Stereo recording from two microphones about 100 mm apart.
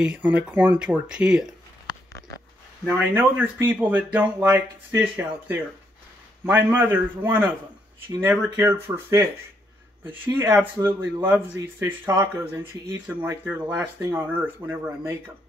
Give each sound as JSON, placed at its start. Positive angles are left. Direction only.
{"t": 0.0, "sound": "speech", "side_deg": -15}
{"t": 2.8, "sound": "speech", "side_deg": -15}
{"t": 8.5, "sound": "speech", "side_deg": -25}